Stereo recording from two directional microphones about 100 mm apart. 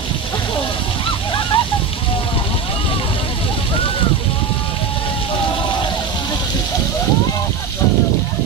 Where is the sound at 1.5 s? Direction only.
65° left (ahead or behind).